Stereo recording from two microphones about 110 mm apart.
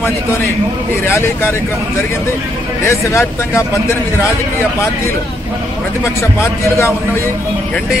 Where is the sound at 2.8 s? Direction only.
25° left (ahead or behind).